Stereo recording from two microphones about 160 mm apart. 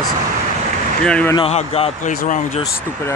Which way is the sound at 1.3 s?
40° left (ahead or behind).